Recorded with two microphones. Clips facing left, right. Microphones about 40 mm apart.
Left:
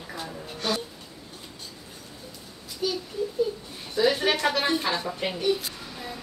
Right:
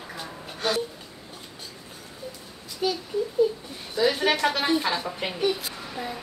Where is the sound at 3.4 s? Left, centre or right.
Centre.